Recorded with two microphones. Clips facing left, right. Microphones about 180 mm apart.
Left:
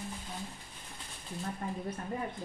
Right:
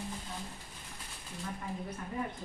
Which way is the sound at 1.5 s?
45° left (ahead or behind).